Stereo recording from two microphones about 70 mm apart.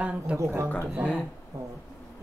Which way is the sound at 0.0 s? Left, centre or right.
Centre.